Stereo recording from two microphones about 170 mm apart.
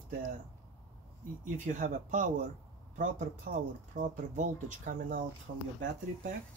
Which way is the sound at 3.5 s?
55° right (ahead or behind).